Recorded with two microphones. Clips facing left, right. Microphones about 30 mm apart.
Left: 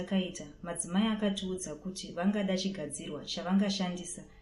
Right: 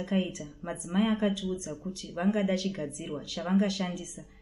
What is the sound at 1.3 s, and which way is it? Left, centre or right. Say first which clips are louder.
Speech: right 3 dB; left.